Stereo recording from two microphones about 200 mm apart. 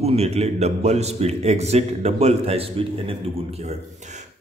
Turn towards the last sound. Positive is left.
turn(degrees=-30)  # may be behind; listen again after turning